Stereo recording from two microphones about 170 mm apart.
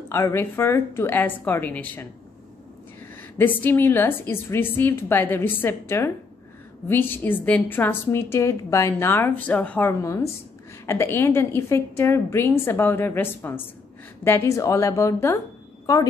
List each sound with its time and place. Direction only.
0.1 s a woman's voice: 15° left (ahead or behind)
3.2 s a woman's voice: 10° left (ahead or behind)